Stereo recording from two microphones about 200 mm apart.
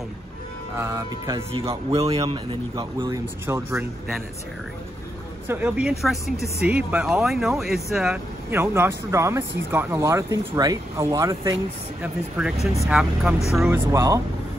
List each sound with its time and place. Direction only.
0.7 s speech: 15° right (ahead or behind)
5.5 s speech: 5° right (ahead or behind)
12.0 s speech: 5° right (ahead or behind)
13.7 s speech: 15° right (ahead or behind)